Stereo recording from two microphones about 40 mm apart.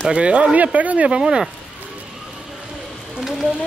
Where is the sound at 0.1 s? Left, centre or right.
Right.